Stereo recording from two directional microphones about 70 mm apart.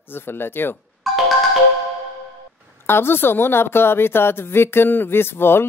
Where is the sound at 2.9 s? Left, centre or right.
Left.